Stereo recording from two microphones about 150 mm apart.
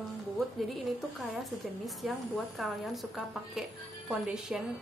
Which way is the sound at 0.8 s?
Centre (ahead or behind).